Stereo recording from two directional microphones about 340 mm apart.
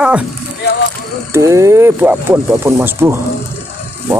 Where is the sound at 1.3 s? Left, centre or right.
Centre.